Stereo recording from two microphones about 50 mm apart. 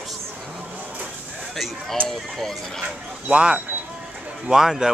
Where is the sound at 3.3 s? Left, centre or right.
Centre.